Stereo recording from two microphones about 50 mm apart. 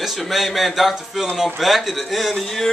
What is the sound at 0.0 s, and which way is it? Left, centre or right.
Speech, centre.